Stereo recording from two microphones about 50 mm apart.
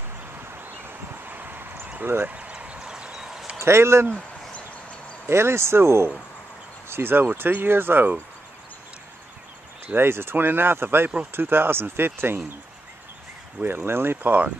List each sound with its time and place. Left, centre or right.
0.5 s a sound: right
2.2 s a sound: right
2.9 s clip-clop: centre
3.5 s speech: right
5.3 s speech: right
6.9 s speech: right
9.9 s speech: right
13.6 s speech: right
14.2 s speech: right